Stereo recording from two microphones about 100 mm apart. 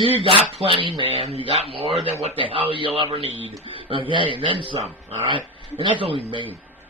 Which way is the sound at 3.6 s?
60° right (ahead or behind).